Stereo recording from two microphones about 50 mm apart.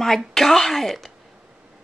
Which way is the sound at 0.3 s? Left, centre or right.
Centre.